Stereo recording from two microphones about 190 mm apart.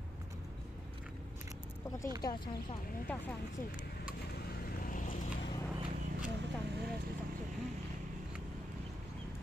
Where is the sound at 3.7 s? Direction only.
50° left (ahead or behind).